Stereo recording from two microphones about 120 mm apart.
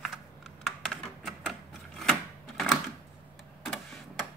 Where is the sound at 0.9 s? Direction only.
5° left (ahead or behind).